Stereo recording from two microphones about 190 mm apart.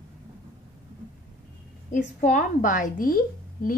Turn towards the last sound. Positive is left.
turn(degrees=50)  # may be behind; listen again after turning